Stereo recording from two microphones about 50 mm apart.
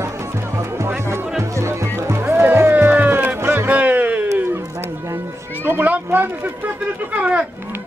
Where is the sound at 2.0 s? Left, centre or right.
Right.